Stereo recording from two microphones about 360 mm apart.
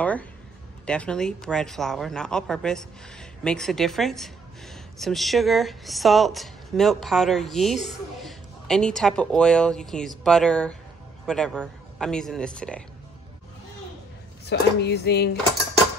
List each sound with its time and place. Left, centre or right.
0.0 s speech: centre
14.4 s speech: left